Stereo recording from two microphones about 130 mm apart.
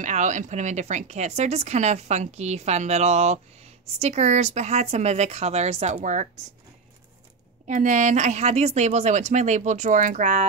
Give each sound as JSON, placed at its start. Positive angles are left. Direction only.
{"t": 0.0, "sound": "a woman's voice", "side_deg": -70}
{"t": 7.6, "sound": "a woman's voice", "side_deg": -75}